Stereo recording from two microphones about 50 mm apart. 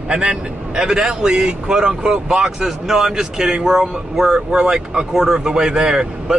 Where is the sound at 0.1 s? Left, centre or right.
Centre.